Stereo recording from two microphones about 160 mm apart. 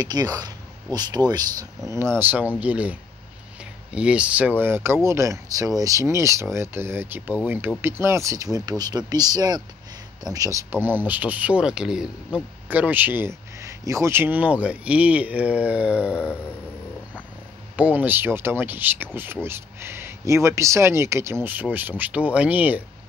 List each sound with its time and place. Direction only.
0.0 s speech: 25° right (ahead or behind)
2.1 s speech: 10° right (ahead or behind)
17.7 s speech: 10° right (ahead or behind)